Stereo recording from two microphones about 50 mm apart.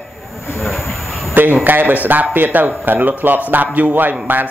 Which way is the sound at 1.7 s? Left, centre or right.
Right.